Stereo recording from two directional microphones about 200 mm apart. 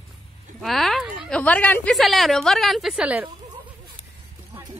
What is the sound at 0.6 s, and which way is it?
A woman's voice, centre (ahead or behind).